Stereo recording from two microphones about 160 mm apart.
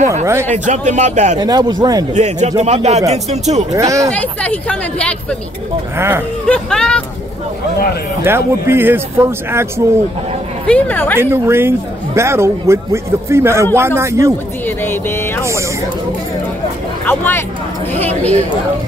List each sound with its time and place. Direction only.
0.1 s speech: 15° right (ahead or behind)
0.5 s speech: 50° right (ahead or behind)
1.4 s speech: 25° right (ahead or behind)
2.1 s speech: 45° right (ahead or behind)
3.7 s speech: 20° right (ahead or behind)
4.1 s speech: 10° left (ahead or behind)
5.9 s speech: 15° right (ahead or behind)
6.4 s speech: 5° left (ahead or behind)
8.2 s speech: 15° right (ahead or behind)
10.7 s speech: 10° left (ahead or behind)
11.1 s speech: 15° right (ahead or behind)
14.8 s speech: 15° left (ahead or behind)
17.0 s speech: 10° left (ahead or behind)